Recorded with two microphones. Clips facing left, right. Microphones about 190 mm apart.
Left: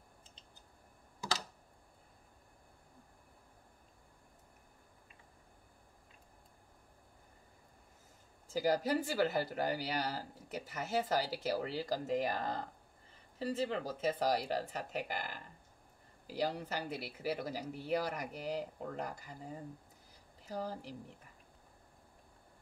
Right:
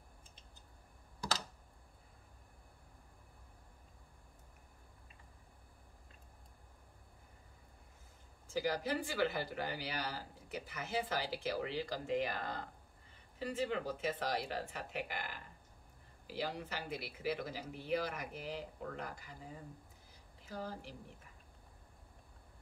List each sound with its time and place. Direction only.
8.5 s speech: 40° left (ahead or behind)
16.3 s speech: 40° left (ahead or behind)
20.4 s speech: 40° left (ahead or behind)